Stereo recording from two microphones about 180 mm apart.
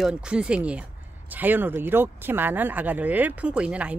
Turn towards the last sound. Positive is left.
turn(degrees=-5)  # may be behind; listen again after turning